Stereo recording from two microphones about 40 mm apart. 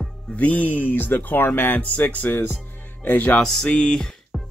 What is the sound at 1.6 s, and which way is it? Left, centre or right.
Speech, left.